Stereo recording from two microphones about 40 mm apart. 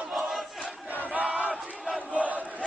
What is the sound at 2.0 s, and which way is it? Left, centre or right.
Crowd, right.